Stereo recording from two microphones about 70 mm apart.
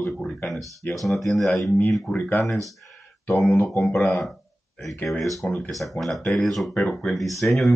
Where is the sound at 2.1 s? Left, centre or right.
Left.